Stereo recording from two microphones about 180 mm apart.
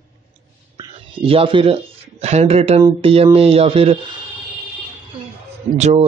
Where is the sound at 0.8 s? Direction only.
30° right (ahead or behind).